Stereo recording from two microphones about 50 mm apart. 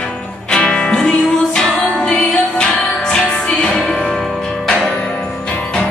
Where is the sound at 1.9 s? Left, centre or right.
Centre.